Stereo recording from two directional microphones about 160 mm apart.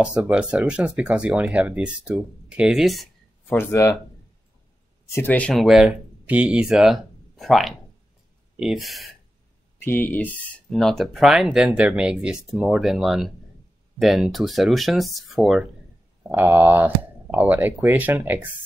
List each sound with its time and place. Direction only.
0.2 s speech: 5° right (ahead or behind)
3.4 s speech: 15° left (ahead or behind)
5.1 s speech: 10° left (ahead or behind)
9.8 s speech: 15° left (ahead or behind)
16.3 s speech: 10° right (ahead or behind)